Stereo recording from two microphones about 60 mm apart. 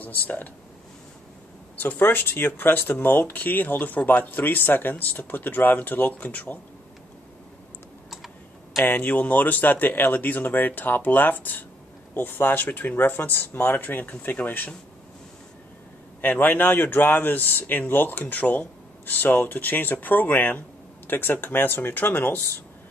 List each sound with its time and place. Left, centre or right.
0.0 s speech: left
1.8 s speech: left
8.8 s speech: left
16.2 s speech: left